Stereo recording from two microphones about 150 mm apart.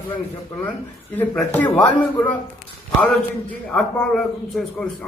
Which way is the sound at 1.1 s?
10° left (ahead or behind).